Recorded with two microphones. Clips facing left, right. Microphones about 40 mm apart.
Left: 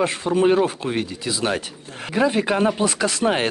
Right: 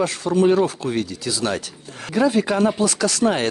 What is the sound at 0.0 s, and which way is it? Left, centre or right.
Speech, left.